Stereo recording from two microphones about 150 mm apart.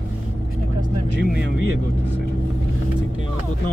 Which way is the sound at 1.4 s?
90° left.